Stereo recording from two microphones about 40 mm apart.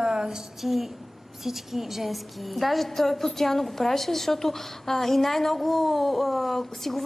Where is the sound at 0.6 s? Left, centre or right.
Centre.